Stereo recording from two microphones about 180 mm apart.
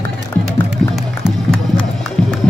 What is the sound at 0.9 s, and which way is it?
Music, centre (ahead or behind).